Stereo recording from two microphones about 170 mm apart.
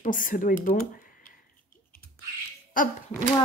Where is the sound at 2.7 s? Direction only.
50° left (ahead or behind).